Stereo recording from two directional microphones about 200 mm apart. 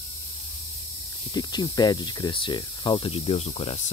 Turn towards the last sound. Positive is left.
turn(degrees=30)  # may be behind; listen again after turning